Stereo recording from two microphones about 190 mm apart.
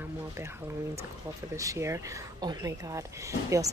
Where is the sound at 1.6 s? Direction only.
15° right (ahead or behind).